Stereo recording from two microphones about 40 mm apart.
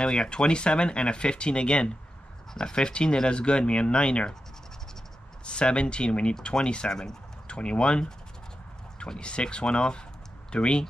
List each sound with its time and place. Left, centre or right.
0.0 s speech: left
5.4 s speech: left